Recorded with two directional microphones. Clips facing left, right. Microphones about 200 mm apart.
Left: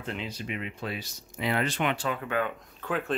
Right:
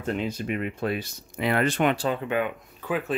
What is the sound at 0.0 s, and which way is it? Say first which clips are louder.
Speech: right 7 dB; 50° right (ahead or behind).